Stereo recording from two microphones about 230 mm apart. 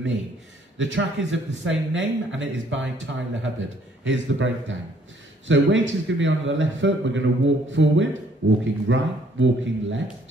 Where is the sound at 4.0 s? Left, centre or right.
Right.